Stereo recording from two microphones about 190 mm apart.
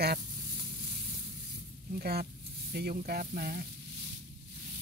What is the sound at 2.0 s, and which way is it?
Speech, 55° right (ahead or behind).